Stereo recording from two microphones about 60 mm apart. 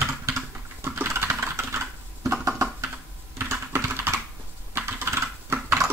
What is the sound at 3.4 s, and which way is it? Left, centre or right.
Typing, right.